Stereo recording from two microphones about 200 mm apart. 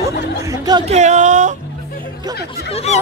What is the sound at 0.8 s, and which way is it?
Speech, 35° right (ahead or behind).